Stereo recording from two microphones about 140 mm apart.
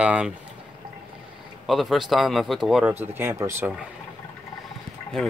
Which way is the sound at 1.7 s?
Centre (ahead or behind).